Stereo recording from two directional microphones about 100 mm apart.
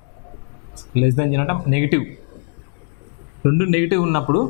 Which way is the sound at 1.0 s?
15° left (ahead or behind).